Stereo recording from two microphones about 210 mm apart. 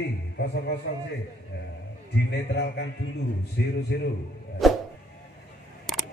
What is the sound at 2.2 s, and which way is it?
A man's voice, 55° left (ahead or behind).